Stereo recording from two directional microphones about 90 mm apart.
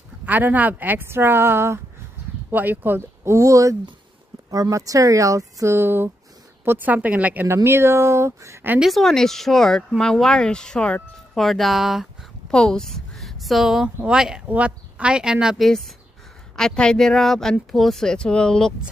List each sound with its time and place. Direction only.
0.2 s speech: 20° right (ahead or behind)
3.3 s a woman's voice: 35° right (ahead or behind); by 7.4 s 15° right (ahead or behind)
7.4 s speech: 30° right (ahead or behind)
8.8 s speech: centre (ahead or behind)
12.4 s a woman's voice: 10° left (ahead or behind)